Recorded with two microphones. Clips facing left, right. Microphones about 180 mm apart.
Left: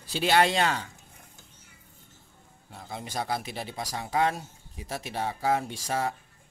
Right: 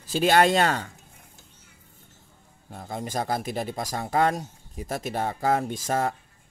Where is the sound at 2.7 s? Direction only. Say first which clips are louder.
Right 5 dB; 45° right (ahead or behind).